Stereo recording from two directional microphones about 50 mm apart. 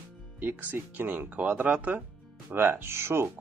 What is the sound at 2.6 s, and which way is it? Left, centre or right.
Speech, right.